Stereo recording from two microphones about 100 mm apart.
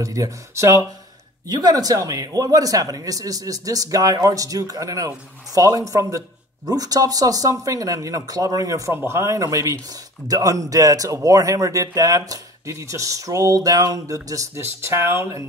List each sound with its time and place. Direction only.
0.0 s speech: 35° right (ahead or behind)